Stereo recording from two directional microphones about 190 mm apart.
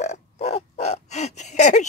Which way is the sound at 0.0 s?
35° left (ahead or behind).